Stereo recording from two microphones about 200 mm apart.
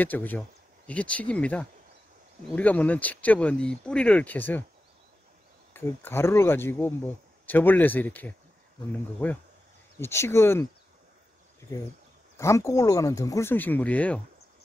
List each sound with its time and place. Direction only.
0.0 s speech: 10° left (ahead or behind)
5.7 s speech: 10° left (ahead or behind)
12.4 s speech: 15° left (ahead or behind)